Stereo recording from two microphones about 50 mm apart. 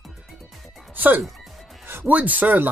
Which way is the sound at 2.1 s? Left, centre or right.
Right.